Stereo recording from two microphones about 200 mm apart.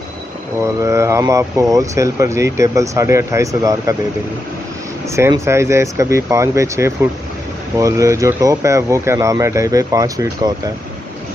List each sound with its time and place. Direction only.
0.7 s speech: 15° right (ahead or behind)
5.1 s speech: 15° right (ahead or behind)